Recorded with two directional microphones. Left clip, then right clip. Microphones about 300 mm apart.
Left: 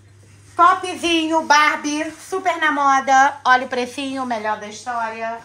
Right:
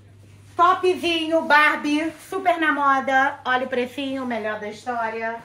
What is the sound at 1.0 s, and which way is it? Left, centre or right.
A woman's voice, centre.